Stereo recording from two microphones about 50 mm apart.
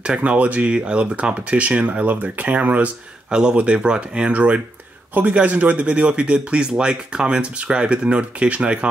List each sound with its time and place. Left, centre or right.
0.0 s speech: centre
3.3 s speech: centre
4.3 s speech: right